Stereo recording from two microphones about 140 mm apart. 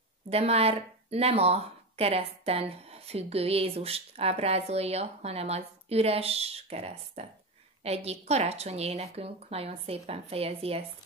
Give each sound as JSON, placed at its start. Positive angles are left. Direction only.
{"t": 0.3, "sound": "speech", "side_deg": -45}